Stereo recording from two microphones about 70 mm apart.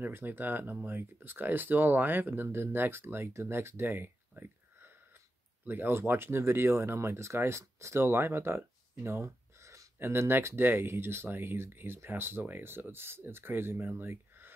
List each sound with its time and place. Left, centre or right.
0.0 s speech: right